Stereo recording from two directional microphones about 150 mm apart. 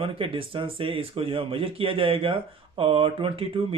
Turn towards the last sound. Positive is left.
turn(degrees=-40)  # may be behind; listen again after turning